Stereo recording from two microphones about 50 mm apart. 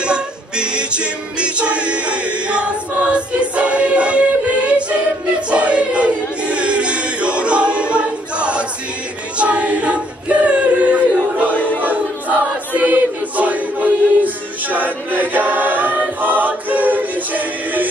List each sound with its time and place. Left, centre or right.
0.0 s music: centre
5.5 s a sound: right
9.4 s choir: right